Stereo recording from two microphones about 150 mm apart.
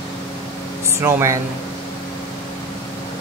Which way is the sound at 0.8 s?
20° right (ahead or behind).